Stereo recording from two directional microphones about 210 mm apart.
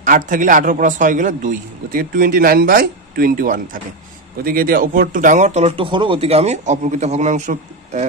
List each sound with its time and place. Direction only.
0.0 s a man's voice: 40° right (ahead or behind)